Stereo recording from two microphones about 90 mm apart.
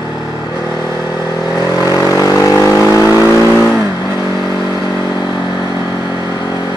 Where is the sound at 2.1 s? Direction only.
35° left (ahead or behind).